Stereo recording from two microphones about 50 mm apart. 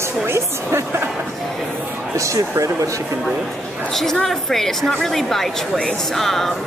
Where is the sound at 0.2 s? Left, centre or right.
Right.